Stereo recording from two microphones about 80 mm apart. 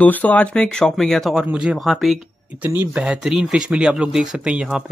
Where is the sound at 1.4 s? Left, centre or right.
Centre.